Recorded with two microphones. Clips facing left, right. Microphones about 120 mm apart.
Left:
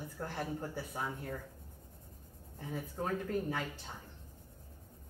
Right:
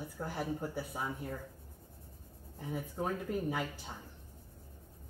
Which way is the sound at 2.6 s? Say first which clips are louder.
Right 2 dB; 5° right (ahead or behind).